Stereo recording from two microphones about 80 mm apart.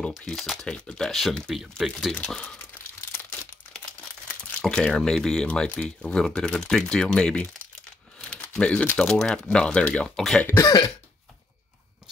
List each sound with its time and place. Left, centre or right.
0.2 s speech: centre
2.6 s tearing: left
4.3 s speech: centre
8.2 s a sound: centre
8.9 s speech: centre
10.6 s throat clearing: left